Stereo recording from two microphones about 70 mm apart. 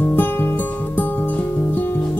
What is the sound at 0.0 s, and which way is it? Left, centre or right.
Music, left.